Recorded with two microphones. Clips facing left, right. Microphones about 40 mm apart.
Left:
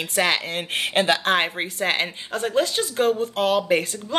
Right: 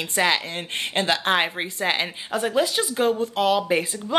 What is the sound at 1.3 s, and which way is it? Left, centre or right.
Speech, centre.